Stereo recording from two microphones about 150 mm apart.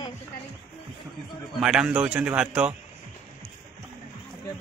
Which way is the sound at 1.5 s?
5° right (ahead or behind).